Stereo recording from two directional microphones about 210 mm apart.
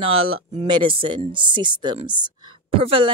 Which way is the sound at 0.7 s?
25° right (ahead or behind).